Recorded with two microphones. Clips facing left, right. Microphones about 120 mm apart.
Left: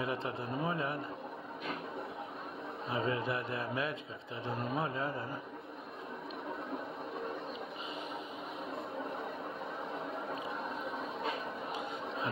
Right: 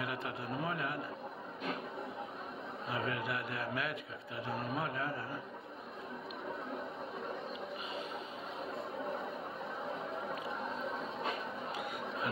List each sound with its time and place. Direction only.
0.0 s speech: 25° left (ahead or behind)
2.9 s speech: 25° left (ahead or behind)
11.7 s chatter: 20° left (ahead or behind)